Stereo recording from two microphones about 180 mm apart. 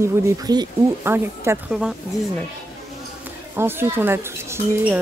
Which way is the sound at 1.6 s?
5° right (ahead or behind).